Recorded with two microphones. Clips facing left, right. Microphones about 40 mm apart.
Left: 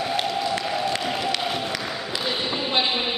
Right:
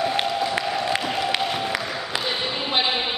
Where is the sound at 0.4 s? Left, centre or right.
Centre.